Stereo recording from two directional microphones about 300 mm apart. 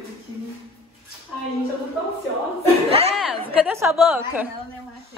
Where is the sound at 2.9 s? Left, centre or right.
Centre.